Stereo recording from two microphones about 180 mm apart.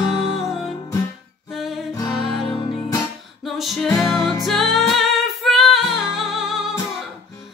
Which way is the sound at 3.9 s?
15° left (ahead or behind).